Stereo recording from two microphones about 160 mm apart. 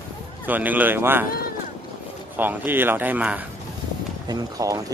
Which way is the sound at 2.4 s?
10° right (ahead or behind).